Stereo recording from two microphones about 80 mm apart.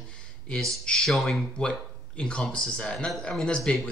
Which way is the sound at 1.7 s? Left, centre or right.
Centre.